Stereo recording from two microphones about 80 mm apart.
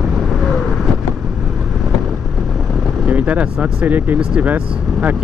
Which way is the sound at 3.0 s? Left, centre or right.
Right.